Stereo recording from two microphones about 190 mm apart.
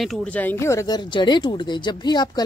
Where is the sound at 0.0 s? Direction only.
5° left (ahead or behind).